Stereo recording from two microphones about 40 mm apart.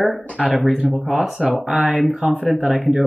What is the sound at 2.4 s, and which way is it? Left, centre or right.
Speech, centre.